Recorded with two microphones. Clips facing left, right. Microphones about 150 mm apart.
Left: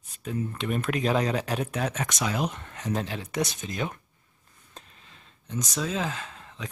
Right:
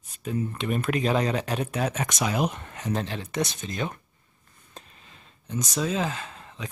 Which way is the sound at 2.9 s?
5° left (ahead or behind).